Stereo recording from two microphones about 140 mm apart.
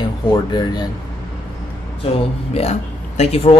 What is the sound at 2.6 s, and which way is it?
Speech, 45° left (ahead or behind).